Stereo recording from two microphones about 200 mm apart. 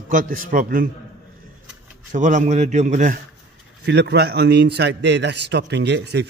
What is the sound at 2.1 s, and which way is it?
A man's voice, 40° right (ahead or behind).